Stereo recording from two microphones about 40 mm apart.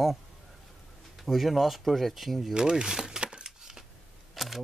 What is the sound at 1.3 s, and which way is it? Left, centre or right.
Speech, centre.